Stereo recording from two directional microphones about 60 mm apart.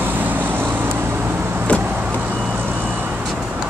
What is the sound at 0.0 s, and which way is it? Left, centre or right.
Vehicle, right.